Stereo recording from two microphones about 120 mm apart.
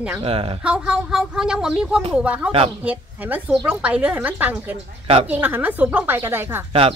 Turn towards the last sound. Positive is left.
turn(degrees=-20)  # may be behind; listen again after turning